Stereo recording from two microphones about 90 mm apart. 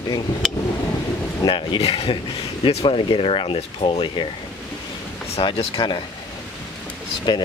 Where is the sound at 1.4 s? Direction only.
60° left (ahead or behind); by 2.2 s 85° left.